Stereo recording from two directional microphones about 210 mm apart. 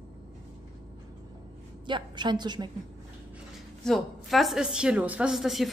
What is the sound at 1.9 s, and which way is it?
Speech, 20° right (ahead or behind).